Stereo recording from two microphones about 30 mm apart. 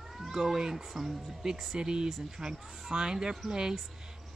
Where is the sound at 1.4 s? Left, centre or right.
Centre.